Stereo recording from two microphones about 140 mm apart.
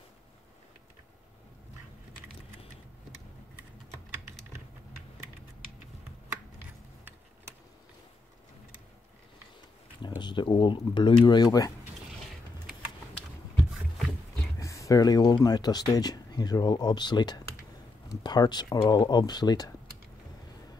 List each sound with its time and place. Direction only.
10.0 s speech: 30° left (ahead or behind)
14.6 s speech: 20° left (ahead or behind)